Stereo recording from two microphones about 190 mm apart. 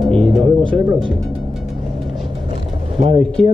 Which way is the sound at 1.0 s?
Centre (ahead or behind).